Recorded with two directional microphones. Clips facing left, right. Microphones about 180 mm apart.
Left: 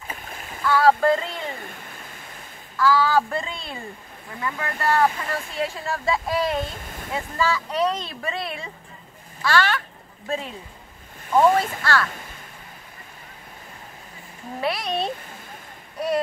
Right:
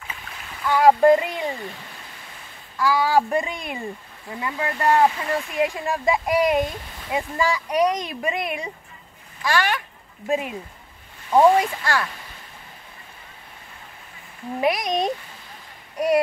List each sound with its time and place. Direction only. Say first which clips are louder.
0.7 s speech: right 3 dB; 15° right (ahead or behind)
2.8 s speech: even; 15° right (ahead or behind)
14.6 s speech: right 4 dB; 15° right (ahead or behind)